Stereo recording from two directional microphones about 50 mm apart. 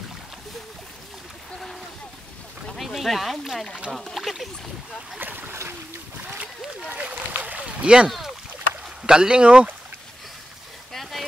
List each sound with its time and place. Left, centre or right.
2.8 s speech: centre
5.2 s speech: right
6.9 s boat: right
8.8 s speech: centre
10.9 s a sound: centre